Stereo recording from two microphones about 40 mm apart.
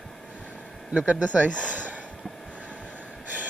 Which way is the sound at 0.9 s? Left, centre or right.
Right.